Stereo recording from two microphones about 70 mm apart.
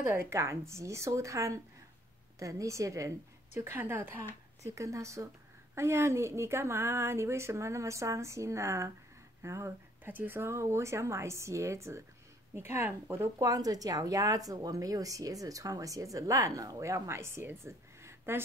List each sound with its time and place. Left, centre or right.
0.0 s a woman's voice: right
3.5 s speech: right
4.7 s a woman's voice: right
10.0 s a woman's voice: right
13.4 s a woman's voice: right